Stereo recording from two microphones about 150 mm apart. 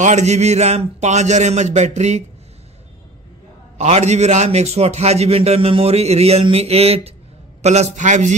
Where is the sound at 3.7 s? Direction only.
45° right (ahead or behind).